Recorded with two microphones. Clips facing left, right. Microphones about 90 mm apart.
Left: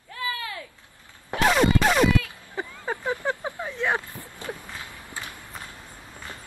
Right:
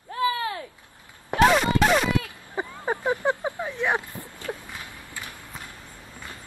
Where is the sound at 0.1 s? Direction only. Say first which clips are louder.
Right 7 dB; 30° right (ahead or behind).